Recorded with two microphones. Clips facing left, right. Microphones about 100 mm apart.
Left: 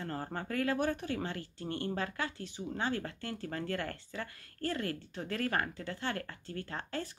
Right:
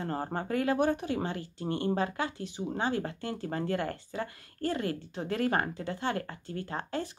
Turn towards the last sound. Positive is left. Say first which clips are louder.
# right 4 dB
turn(degrees=-20)  # may be behind; listen again after turning